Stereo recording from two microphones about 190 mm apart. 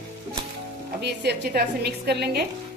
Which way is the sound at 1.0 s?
60° right (ahead or behind).